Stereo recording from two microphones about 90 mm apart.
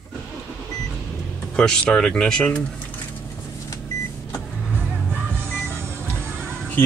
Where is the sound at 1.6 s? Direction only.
10° left (ahead or behind).